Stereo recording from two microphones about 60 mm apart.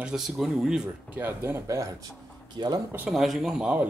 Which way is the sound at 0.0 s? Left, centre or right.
Centre.